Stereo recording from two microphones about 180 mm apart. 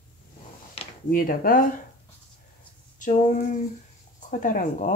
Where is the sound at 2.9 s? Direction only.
45° left (ahead or behind).